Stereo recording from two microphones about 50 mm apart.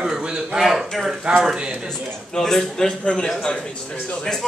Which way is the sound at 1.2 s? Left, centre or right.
Centre.